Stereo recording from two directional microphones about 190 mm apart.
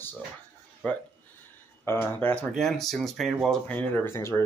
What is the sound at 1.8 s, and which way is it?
Speech, 10° left (ahead or behind).